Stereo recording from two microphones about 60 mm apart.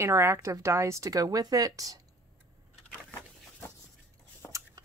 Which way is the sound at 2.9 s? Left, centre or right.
Left.